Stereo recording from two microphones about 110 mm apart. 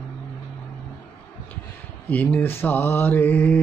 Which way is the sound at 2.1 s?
15° left (ahead or behind).